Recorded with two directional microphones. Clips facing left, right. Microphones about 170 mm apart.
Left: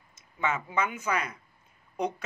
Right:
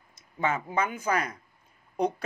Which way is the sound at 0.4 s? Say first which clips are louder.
Right 2 dB; 30° right (ahead or behind).